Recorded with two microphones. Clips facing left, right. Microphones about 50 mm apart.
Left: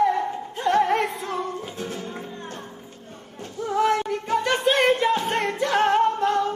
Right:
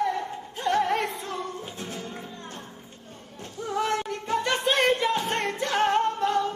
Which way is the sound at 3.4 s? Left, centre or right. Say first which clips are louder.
Left 6 dB; centre.